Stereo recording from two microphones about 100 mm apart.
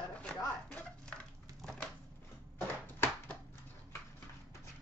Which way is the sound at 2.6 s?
15° left (ahead or behind).